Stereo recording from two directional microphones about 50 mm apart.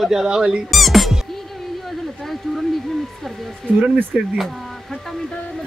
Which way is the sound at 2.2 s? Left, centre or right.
Centre.